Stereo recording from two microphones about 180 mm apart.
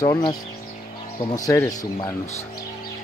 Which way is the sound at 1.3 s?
20° left (ahead or behind).